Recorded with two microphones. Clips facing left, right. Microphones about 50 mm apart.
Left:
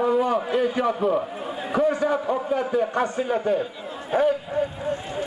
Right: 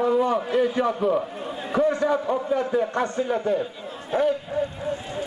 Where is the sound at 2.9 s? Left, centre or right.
Centre.